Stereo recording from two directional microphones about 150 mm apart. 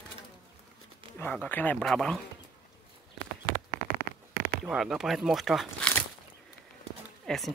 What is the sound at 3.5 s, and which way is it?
Horse, 75° right (ahead or behind).